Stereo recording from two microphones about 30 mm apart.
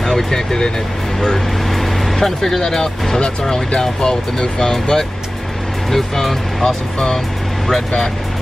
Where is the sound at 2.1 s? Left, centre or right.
Centre.